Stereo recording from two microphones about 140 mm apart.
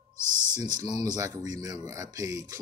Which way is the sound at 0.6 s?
30° right (ahead or behind).